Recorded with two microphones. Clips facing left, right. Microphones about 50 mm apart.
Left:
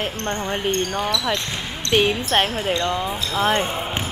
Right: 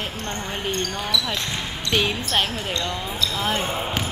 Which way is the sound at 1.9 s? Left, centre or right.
Left.